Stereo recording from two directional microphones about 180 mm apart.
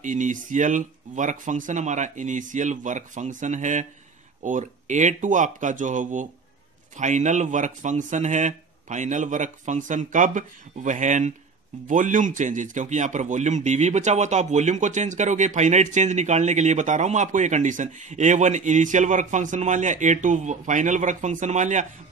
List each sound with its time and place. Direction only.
0.0 s a man's voice: 45° right (ahead or behind)